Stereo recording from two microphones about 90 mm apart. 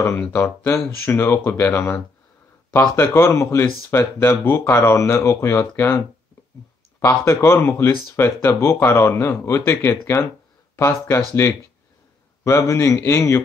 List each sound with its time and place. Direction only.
0.0 s speech: 25° left (ahead or behind)
3.0 s a man's voice: 30° left (ahead or behind)
7.1 s a man's voice: 30° left (ahead or behind)
12.4 s a man's voice: 35° left (ahead or behind)